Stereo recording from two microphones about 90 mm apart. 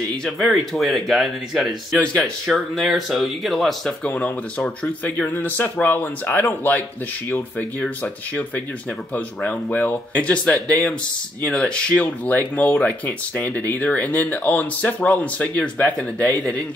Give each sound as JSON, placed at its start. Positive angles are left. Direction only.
{"t": 0.2, "sound": "speech", "side_deg": 0}
{"t": 4.0, "sound": "speech", "side_deg": 15}